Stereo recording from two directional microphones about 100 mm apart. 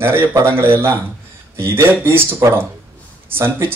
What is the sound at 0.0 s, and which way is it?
Speech, 25° right (ahead or behind).